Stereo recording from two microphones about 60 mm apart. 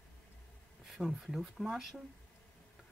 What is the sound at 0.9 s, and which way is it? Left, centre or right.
Speech, centre.